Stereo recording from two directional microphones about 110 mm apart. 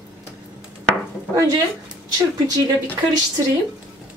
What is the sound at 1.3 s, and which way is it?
Speech, 35° right (ahead or behind).